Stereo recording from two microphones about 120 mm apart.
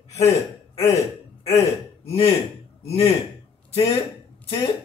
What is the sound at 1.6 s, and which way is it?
Speech, 55° left (ahead or behind).